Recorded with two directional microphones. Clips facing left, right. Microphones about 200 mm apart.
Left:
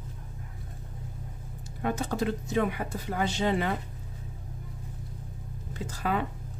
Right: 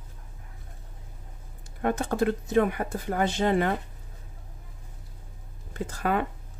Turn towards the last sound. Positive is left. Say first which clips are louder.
# right 3 dB
turn(degrees=-55)  # may be behind; listen again after turning